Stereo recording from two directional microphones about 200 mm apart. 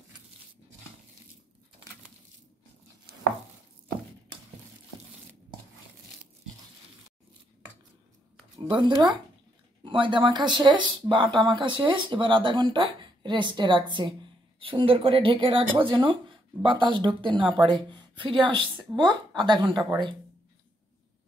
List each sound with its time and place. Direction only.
8.5 s a woman's voice: 20° right (ahead or behind)